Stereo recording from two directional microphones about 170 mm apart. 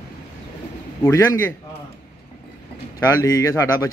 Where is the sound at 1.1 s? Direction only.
15° left (ahead or behind).